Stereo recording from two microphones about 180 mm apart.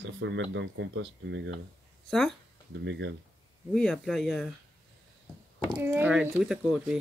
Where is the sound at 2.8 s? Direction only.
85° right.